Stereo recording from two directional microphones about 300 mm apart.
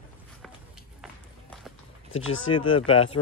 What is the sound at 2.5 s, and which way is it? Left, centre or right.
Speech, centre.